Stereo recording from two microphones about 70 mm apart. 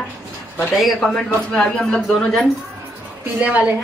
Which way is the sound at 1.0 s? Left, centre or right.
Centre.